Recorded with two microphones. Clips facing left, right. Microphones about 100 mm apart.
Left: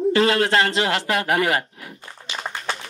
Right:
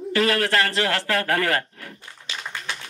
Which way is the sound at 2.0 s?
40° left (ahead or behind).